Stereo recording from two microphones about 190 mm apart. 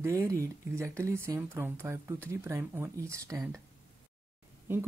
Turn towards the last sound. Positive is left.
turn(degrees=-10)  # may be behind; listen again after turning